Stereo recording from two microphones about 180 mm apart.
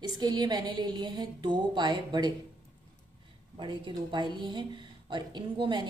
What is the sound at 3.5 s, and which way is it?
Speech, 25° right (ahead or behind).